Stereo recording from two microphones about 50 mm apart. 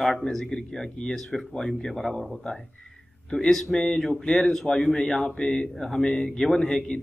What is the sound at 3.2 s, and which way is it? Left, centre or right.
Speech, centre.